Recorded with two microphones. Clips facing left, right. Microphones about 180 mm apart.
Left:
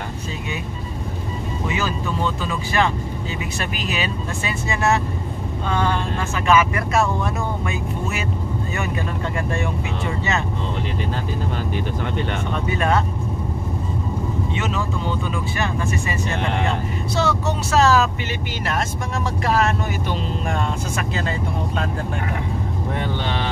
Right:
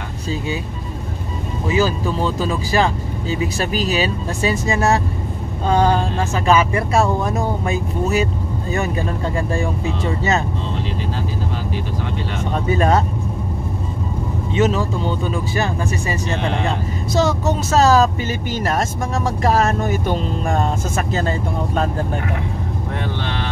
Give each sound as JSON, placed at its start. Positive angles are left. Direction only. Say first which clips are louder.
{"t": 1.7, "sound": "speech", "louder": "right 8 dB", "side_deg": -35}
{"t": 12.6, "sound": "speech", "louder": "right 4 dB", "side_deg": -35}
{"t": 14.6, "sound": "speech", "louder": "right 7 dB", "side_deg": -35}